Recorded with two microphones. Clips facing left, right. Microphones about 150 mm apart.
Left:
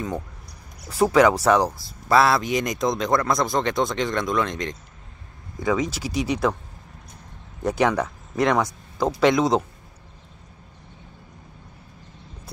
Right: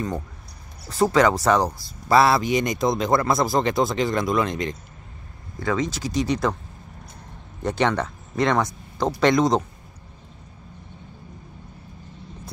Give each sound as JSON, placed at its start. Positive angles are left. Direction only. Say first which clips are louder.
{"t": 0.8, "sound": "speech", "louder": "left 1 dB", "side_deg": 5}
{"t": 5.6, "sound": "speech", "louder": "left 1 dB", "side_deg": 10}
{"t": 7.6, "sound": "speech", "louder": "left 1 dB", "side_deg": 5}